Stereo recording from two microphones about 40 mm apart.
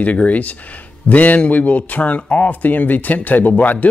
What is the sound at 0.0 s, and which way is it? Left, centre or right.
Speech, left.